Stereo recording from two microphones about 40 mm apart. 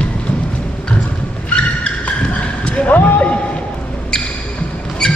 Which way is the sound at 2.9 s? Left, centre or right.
Left.